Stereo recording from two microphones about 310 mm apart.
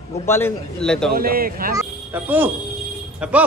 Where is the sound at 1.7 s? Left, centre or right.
Centre.